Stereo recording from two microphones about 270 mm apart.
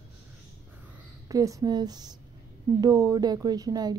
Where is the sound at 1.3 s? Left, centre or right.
Centre.